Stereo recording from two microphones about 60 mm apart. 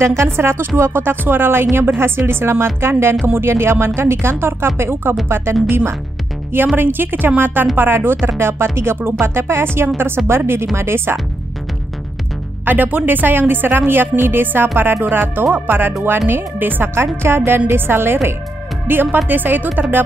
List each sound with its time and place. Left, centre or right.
0.0 s speech: right
6.8 s speech: right
12.6 s speech: right
16.9 s speech: right